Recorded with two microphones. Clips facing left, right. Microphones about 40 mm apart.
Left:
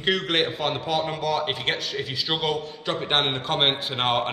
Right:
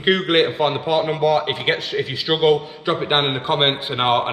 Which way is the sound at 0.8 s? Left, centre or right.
Centre.